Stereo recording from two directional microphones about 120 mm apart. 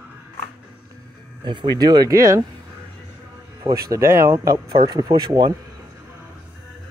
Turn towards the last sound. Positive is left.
turn(degrees=-35)  # may be behind; listen again after turning